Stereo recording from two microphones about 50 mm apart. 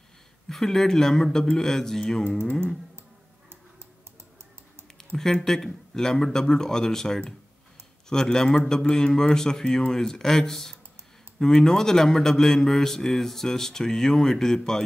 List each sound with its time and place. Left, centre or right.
0.5 s a man's voice: centre
2.2 s speech: left
4.9 s a man's voice: centre